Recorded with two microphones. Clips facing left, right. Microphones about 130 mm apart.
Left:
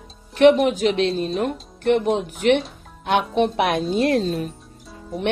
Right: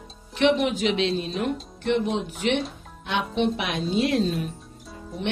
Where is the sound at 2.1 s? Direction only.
50° left (ahead or behind).